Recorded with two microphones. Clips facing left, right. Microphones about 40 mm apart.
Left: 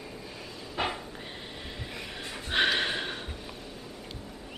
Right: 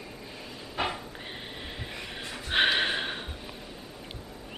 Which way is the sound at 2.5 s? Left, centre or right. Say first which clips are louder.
Right 2 dB; centre.